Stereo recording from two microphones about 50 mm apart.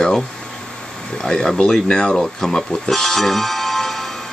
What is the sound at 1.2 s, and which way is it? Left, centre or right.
Speech, centre.